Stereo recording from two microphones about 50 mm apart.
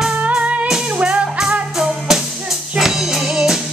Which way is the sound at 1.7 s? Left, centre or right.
Centre.